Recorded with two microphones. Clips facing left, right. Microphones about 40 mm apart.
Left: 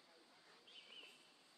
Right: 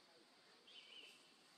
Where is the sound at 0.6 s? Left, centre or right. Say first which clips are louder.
Even; centre.